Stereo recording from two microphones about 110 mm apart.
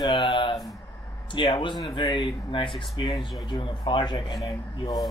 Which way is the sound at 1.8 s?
35° left (ahead or behind).